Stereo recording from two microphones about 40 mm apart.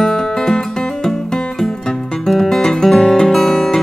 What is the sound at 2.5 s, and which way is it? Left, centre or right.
Music, centre.